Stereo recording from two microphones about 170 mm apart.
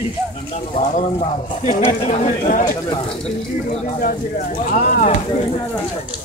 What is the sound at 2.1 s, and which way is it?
Speech, 50° left (ahead or behind).